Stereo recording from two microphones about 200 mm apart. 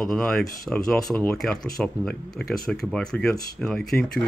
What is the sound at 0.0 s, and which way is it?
Speech, centre (ahead or behind).